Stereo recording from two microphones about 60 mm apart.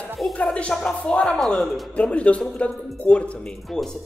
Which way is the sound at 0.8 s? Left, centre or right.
Centre.